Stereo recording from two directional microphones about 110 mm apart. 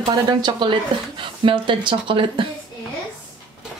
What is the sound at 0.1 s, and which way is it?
A woman's voice, 40° right (ahead or behind).